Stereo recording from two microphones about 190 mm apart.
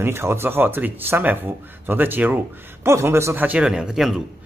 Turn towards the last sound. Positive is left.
turn(degrees=0)  # may be behind; listen again after turning